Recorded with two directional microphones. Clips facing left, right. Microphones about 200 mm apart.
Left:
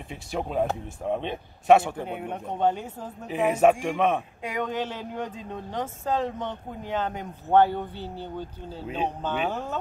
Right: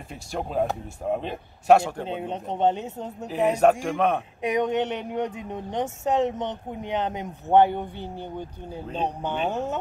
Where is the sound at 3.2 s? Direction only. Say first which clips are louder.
Right 1 dB; centre (ahead or behind).